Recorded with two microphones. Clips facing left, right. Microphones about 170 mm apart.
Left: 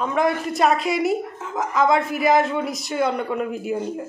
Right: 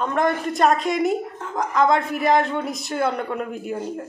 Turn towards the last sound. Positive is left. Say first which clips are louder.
# left 3 dB
turn(degrees=0)  # may be behind; listen again after turning